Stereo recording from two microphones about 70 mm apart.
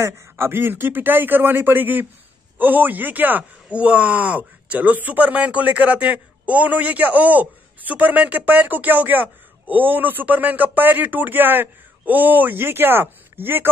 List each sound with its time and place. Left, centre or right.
0.0 s speech: right